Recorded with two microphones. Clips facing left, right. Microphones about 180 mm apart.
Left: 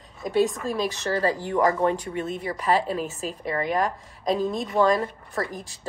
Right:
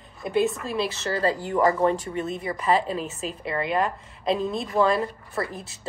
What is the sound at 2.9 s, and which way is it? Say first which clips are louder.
Speech: left 1 dB; 40° left (ahead or behind).